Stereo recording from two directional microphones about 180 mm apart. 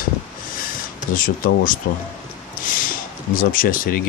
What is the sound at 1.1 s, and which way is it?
Speech, 50° left (ahead or behind).